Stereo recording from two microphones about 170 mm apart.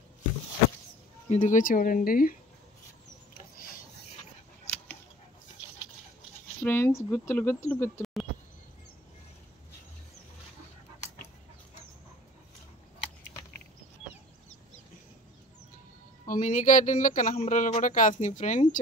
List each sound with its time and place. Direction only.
1.3 s speech: 45° left (ahead or behind)
6.6 s speech: 15° left (ahead or behind)
8.0 s a sound: centre (ahead or behind)
16.3 s speech: 50° left (ahead or behind)